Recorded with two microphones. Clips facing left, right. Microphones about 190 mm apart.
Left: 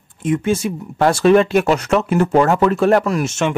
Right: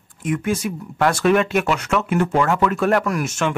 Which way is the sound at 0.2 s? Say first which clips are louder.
Left 4 dB; 25° left (ahead or behind).